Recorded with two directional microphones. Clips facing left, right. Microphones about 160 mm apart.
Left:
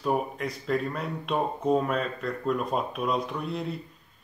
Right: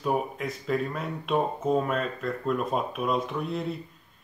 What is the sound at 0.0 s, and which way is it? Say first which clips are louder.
Speech: even; centre (ahead or behind).